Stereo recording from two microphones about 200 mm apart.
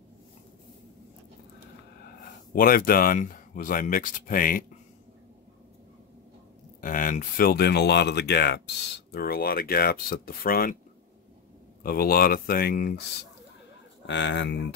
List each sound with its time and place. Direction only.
2.2 s speech: 45° left (ahead or behind)
6.8 s speech: 45° left (ahead or behind)
11.8 s speech: 50° left (ahead or behind)
14.0 s speech: 60° left (ahead or behind)